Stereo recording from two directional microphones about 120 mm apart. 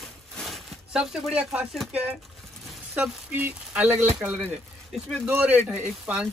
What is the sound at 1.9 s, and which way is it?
Speech, 10° right (ahead or behind).